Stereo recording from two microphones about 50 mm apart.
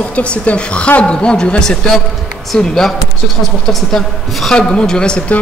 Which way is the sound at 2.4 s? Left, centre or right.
Centre.